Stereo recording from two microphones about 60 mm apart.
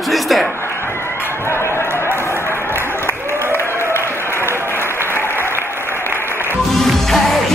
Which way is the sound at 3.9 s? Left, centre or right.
Left.